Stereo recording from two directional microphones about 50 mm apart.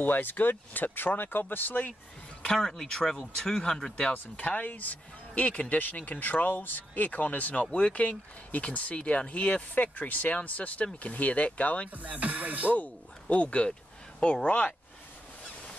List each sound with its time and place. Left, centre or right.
0.0 s speech: left
2.4 s speech: centre
4.1 s speech: left
12.0 s speech: right
12.7 s speech: left